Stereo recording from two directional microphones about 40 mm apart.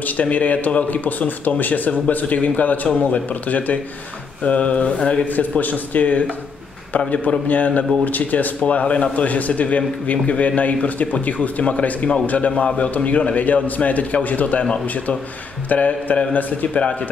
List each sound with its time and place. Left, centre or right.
0.0 s speech: left
5.3 s a man's voice: left
7.4 s a man's voice: left